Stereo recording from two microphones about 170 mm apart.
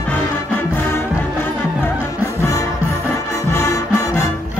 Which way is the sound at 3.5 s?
15° left (ahead or behind).